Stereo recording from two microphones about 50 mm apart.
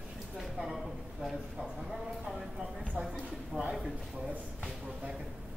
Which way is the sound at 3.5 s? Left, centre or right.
Right.